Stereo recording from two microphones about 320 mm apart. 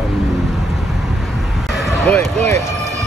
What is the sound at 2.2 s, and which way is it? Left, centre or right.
Speech, right.